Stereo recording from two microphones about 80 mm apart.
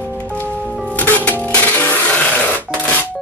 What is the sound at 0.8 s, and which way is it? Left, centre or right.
Music, centre.